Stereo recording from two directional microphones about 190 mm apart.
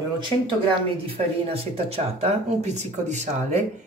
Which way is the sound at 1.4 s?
30° right (ahead or behind).